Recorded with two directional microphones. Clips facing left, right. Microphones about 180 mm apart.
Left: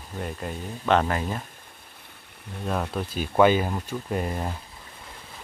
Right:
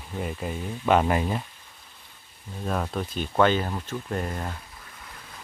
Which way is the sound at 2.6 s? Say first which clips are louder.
Even; centre (ahead or behind).